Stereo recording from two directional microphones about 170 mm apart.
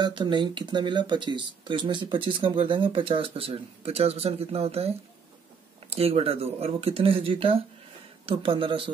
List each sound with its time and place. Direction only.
0.0 s speech: 25° right (ahead or behind)